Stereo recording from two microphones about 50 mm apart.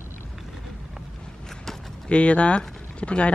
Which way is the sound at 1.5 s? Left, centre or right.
Centre.